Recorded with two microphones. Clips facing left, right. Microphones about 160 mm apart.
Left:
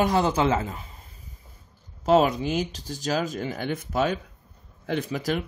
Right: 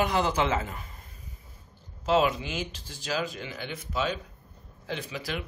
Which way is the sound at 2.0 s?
40° left (ahead or behind).